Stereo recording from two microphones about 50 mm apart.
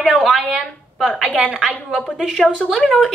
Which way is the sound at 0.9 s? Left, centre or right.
Centre.